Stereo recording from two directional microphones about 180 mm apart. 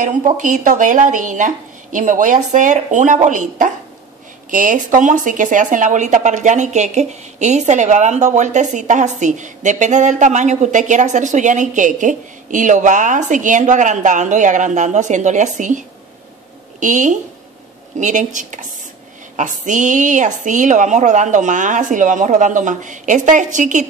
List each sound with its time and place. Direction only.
0.0 s speech: 45° right (ahead or behind)
16.8 s speech: 45° right (ahead or behind)